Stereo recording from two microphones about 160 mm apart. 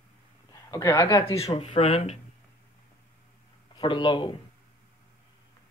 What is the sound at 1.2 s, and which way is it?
Speech, 40° left (ahead or behind).